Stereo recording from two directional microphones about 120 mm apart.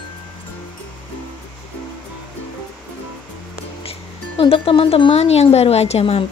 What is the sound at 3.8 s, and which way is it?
Speech, 55° left (ahead or behind).